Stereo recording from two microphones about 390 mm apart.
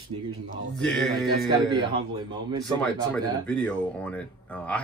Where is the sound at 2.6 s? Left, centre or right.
Centre.